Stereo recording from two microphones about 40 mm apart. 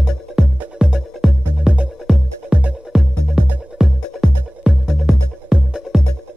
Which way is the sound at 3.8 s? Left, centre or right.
Centre.